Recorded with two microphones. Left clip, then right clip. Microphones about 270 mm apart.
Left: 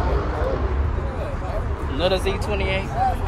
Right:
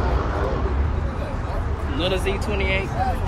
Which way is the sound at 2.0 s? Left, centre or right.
Centre.